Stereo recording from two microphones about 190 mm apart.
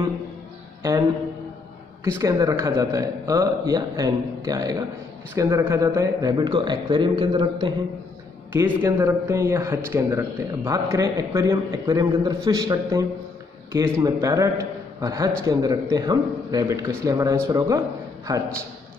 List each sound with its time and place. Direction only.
2.0 s a man's voice: 15° right (ahead or behind)